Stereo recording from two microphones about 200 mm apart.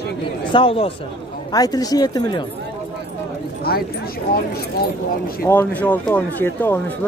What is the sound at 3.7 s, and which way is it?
Speech, 50° left (ahead or behind).